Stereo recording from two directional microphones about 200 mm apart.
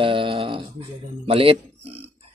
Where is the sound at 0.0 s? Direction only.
25° right (ahead or behind).